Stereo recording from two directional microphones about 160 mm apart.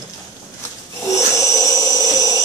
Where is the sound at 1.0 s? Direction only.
20° left (ahead or behind).